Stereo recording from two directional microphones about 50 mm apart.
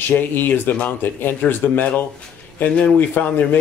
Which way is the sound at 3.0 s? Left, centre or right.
Left.